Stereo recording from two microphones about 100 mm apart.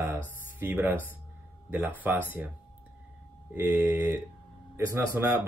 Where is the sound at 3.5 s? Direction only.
20° right (ahead or behind).